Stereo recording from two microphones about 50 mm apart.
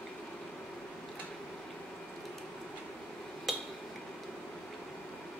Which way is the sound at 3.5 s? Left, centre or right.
Centre.